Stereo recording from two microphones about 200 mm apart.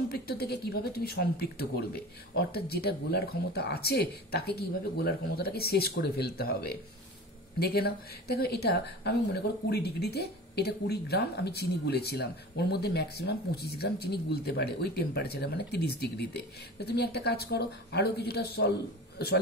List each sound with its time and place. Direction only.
0.1 s a woman's voice: 50° left (ahead or behind)